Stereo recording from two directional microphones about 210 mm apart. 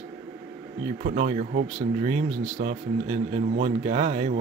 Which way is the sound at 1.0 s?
35° right (ahead or behind).